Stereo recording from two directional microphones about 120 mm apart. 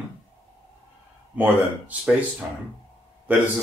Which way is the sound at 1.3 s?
10° right (ahead or behind).